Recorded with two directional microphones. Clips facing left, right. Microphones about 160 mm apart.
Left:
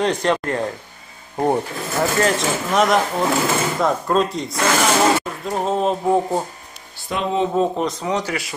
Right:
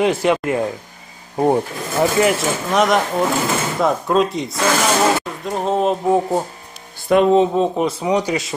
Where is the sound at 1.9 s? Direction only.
10° right (ahead or behind).